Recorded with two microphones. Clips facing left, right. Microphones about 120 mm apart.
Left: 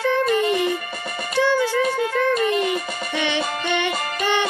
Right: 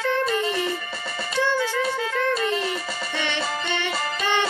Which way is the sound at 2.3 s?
15° left (ahead or behind).